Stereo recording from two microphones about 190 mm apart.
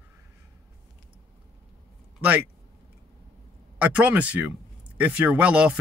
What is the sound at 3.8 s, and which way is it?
Speech, 5° right (ahead or behind).